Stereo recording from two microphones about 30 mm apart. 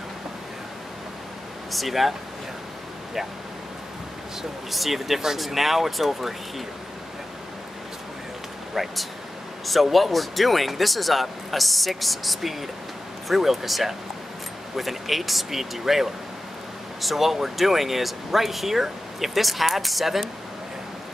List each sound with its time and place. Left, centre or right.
1.7 s speech: centre
4.6 s speech: centre
8.8 s speech: centre